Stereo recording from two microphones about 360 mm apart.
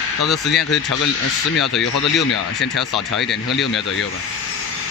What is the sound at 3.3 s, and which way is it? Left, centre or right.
Speech, left.